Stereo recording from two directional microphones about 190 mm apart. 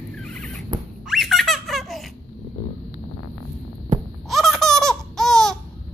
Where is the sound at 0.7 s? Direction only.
20° right (ahead or behind).